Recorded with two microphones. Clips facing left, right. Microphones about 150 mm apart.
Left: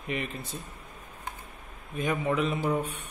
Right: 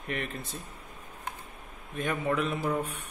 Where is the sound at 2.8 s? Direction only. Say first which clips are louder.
Left 1 dB; 30° left (ahead or behind).